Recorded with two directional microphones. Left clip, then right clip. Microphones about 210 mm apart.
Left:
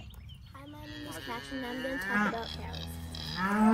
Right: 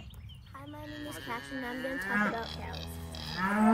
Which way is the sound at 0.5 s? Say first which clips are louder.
Right 3 dB; 15° right (ahead or behind).